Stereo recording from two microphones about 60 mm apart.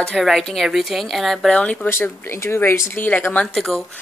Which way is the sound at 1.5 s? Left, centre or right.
Left.